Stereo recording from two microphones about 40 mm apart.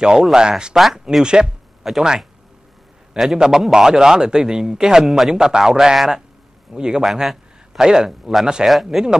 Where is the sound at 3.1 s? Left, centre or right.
Centre.